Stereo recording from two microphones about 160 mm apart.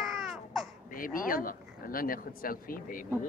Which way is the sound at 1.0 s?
60° left (ahead or behind).